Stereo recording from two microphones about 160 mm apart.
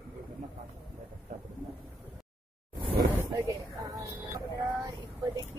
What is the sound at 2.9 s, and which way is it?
Vehicle, 20° right (ahead or behind).